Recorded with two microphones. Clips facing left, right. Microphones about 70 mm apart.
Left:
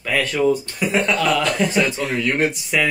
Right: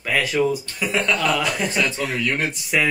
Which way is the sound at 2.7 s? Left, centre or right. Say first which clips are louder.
Right 1 dB; centre.